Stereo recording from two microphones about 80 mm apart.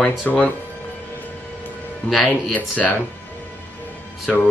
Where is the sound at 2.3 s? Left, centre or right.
Left.